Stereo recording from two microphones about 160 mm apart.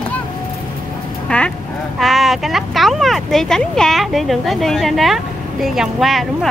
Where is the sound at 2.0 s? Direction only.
Centre (ahead or behind).